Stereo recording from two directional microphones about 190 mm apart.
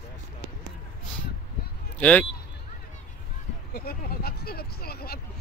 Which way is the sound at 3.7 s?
55° left (ahead or behind).